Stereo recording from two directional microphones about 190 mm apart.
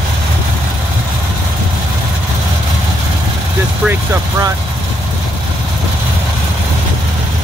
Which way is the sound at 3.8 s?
15° right (ahead or behind).